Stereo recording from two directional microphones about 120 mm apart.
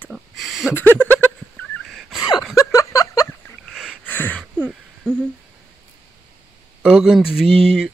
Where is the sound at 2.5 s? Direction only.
30° left (ahead or behind).